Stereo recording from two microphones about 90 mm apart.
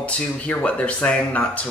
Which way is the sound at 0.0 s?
15° left (ahead or behind).